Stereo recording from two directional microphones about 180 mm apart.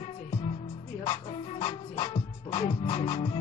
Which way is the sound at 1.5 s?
30° left (ahead or behind).